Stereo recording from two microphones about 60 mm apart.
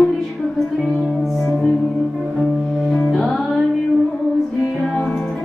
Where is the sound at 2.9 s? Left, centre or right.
Centre.